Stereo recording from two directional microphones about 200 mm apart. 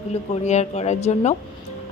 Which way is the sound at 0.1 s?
35° left (ahead or behind).